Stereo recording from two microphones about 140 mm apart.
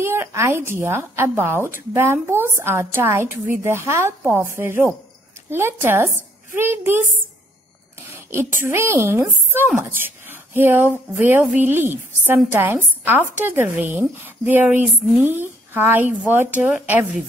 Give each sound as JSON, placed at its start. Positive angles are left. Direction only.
{"t": 0.0, "sound": "a woman's voice", "side_deg": -20}
{"t": 8.1, "sound": "a sound", "side_deg": -20}
{"t": 8.6, "sound": "a woman's voice", "side_deg": -20}